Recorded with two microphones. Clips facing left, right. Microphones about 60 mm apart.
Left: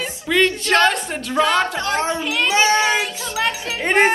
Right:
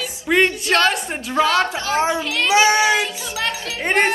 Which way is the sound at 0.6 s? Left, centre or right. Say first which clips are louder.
Left 1 dB; centre.